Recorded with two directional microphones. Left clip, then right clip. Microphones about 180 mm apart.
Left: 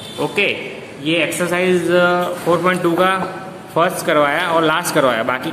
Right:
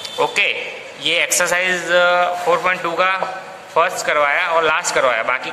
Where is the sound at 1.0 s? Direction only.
35° right (ahead or behind).